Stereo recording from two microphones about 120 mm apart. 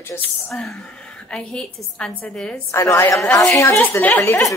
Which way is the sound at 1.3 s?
5° left (ahead or behind).